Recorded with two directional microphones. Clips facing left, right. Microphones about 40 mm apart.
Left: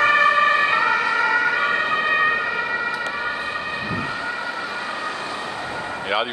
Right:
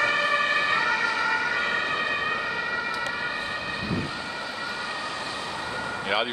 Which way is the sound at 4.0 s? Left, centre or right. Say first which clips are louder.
Left 5 dB; left.